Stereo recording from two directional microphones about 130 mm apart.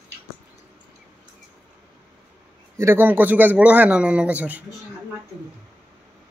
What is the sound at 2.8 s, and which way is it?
A man's voice, 15° right (ahead or behind).